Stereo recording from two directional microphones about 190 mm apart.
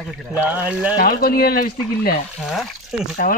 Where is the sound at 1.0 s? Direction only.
50° left (ahead or behind).